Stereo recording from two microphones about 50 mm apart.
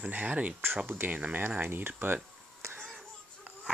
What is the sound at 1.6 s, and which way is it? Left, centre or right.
Speech, right.